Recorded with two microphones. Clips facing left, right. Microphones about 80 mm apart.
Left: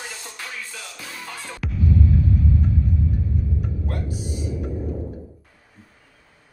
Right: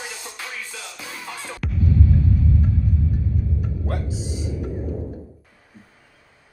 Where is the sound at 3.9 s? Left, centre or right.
Right.